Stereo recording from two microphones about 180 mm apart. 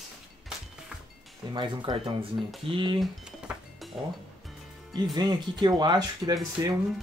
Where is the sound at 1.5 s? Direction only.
25° right (ahead or behind).